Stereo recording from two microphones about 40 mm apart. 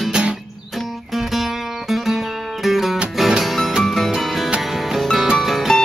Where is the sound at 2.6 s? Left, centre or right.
Centre.